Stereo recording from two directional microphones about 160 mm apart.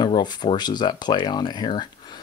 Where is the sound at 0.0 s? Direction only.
25° left (ahead or behind).